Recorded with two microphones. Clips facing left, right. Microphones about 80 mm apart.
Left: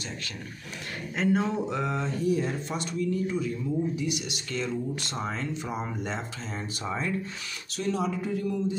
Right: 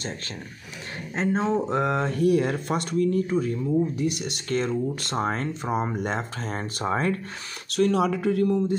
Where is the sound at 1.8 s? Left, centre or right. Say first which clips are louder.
Right 6 dB; right.